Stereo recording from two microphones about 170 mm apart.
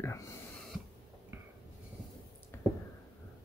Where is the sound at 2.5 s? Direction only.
15° left (ahead or behind).